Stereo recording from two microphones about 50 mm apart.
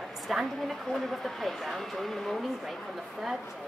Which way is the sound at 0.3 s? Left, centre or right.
Centre.